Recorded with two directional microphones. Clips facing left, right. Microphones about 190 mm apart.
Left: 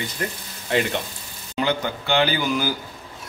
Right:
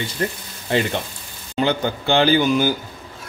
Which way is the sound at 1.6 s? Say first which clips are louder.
Right 3 dB; 30° right (ahead or behind).